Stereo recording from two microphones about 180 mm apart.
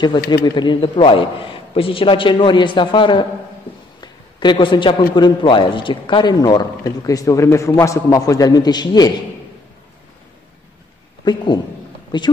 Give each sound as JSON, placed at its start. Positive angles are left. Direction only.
{"t": 0.6, "sound": "a man's voice", "side_deg": 25}
{"t": 4.0, "sound": "a sound", "side_deg": 25}
{"t": 5.1, "sound": "a man's voice", "side_deg": 25}
{"t": 11.2, "sound": "a man's voice", "side_deg": 25}